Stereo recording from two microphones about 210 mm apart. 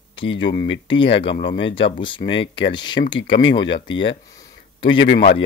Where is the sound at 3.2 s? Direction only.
60° left (ahead or behind).